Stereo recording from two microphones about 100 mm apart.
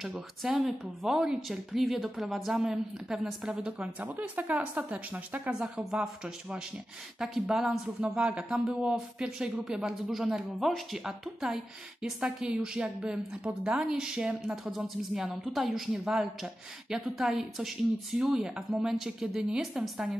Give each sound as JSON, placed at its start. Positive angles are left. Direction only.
{"t": 0.4, "sound": "speech", "side_deg": -5}
{"t": 3.8, "sound": "speech", "side_deg": -15}